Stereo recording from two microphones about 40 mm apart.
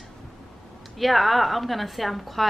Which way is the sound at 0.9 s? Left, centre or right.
Centre.